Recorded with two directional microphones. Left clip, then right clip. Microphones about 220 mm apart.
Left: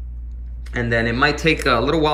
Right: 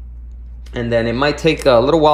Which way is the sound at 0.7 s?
10° right (ahead or behind).